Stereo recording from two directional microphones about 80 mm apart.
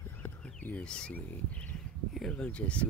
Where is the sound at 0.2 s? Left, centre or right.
Left.